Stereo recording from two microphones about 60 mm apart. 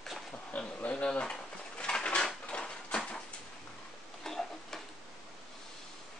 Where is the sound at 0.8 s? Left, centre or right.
Centre.